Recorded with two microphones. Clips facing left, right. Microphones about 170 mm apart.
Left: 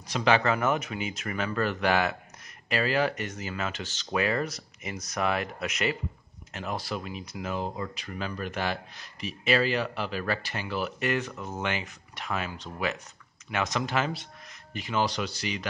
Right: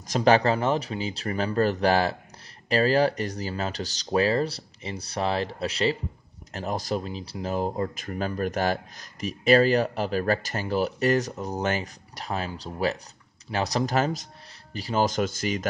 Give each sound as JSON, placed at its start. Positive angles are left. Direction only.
{"t": 0.0, "sound": "speech", "side_deg": -40}